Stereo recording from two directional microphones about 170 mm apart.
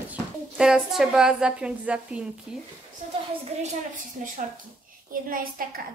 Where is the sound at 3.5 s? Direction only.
40° right (ahead or behind).